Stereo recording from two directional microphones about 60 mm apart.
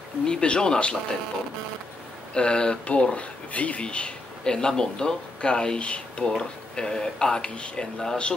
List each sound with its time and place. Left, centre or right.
0.3 s speech: centre
2.3 s speech: centre